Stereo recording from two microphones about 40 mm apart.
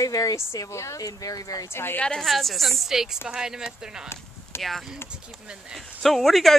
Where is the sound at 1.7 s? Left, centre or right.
Left.